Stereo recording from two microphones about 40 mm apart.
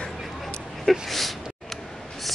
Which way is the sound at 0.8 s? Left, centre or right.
Centre.